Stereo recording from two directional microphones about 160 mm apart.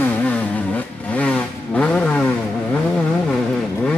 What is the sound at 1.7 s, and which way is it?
Vehicle, 10° left (ahead or behind).